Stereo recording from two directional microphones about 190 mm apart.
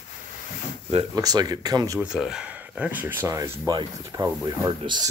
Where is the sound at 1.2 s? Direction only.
20° right (ahead or behind).